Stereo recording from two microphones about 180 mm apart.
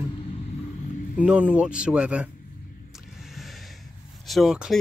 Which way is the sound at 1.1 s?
5° right (ahead or behind).